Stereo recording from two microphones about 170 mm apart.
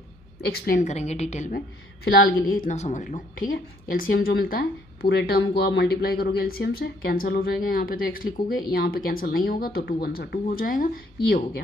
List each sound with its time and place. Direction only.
0.4 s a woman's voice: 65° left (ahead or behind)
0.8 s a woman's voice: 40° left (ahead or behind)
2.0 s a woman's voice: 65° left (ahead or behind)